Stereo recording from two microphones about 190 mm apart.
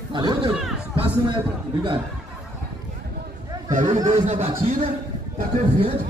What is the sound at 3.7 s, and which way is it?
A man's voice, 40° right (ahead or behind).